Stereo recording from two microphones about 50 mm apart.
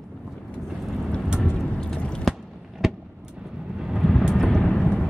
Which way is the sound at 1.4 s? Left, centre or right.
Centre.